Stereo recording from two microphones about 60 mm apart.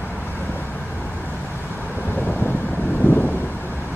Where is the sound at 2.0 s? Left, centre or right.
Left.